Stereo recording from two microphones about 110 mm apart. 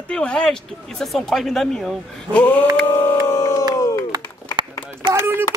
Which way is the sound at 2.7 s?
20° left (ahead or behind).